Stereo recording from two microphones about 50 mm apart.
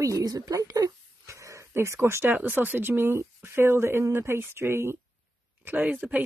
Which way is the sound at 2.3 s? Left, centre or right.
Right.